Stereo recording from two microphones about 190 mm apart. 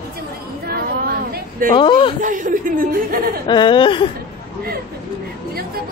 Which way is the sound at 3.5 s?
25° left (ahead or behind).